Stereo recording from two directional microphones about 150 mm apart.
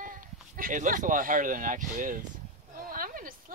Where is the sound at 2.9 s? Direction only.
70° right (ahead or behind).